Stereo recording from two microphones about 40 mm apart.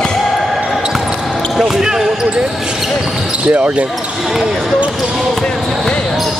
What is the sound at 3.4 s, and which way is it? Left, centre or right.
Speech, right.